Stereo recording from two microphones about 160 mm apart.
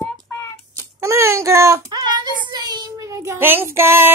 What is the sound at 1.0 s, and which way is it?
Child singing, 20° right (ahead or behind).